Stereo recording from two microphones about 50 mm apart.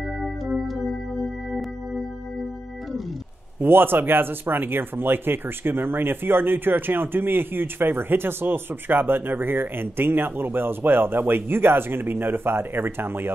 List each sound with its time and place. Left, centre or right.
3.5 s speech: right